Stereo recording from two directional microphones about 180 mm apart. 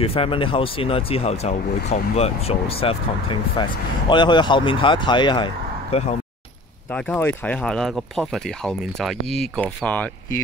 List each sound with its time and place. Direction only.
0.0 s speech: 30° left (ahead or behind)
6.9 s speech: 5° left (ahead or behind)